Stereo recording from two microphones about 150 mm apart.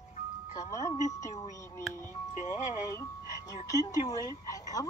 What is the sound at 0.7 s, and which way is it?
Speech, 20° left (ahead or behind).